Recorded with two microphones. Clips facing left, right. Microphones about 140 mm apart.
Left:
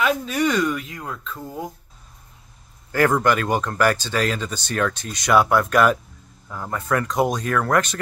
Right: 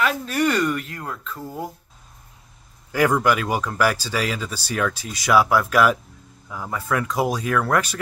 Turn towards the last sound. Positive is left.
turn(degrees=-5)  # may be behind; listen again after turning